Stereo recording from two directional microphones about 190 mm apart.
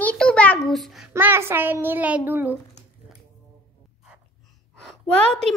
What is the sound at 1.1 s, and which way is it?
A child's voice, 15° right (ahead or behind).